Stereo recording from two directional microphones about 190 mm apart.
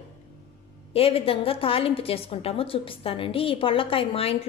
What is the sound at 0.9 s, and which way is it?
A woman's voice, 30° left (ahead or behind).